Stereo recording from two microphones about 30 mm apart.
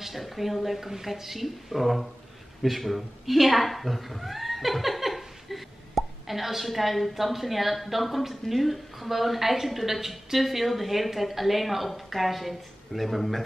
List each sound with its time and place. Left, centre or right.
0.0 s speech: centre